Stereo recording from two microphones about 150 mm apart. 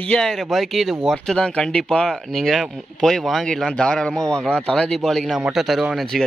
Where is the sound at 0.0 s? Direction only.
5° left (ahead or behind).